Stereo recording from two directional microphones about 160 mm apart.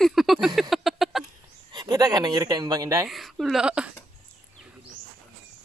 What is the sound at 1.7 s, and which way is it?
Speech, 25° right (ahead or behind).